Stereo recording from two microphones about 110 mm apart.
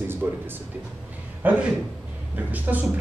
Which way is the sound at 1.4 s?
15° right (ahead or behind).